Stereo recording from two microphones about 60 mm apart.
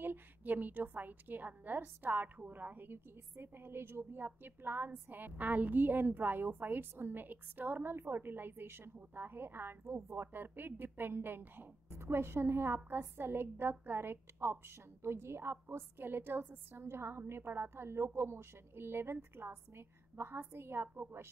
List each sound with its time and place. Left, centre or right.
0.0 s a woman's voice: right